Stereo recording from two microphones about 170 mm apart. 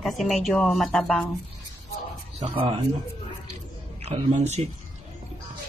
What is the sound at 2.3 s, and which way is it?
Speech, 30° right (ahead or behind).